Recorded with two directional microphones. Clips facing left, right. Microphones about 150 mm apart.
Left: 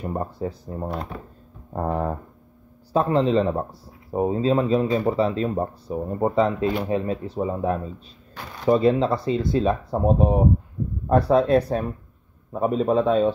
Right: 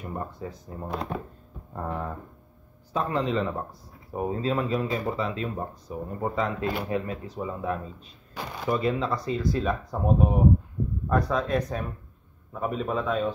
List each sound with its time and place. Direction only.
0.0 s speech: 35° left (ahead or behind)